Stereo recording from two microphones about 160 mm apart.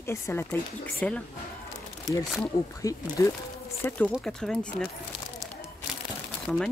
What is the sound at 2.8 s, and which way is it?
Speech, 20° left (ahead or behind).